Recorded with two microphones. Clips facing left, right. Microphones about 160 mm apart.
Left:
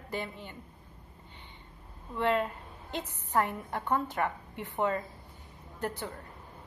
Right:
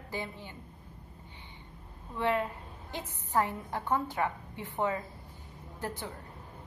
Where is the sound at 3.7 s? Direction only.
15° right (ahead or behind).